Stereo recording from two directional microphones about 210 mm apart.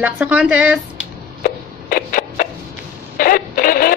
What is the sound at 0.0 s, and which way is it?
Speech, 5° right (ahead or behind).